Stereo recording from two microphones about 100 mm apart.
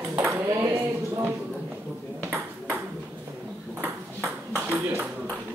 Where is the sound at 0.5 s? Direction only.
25° right (ahead or behind).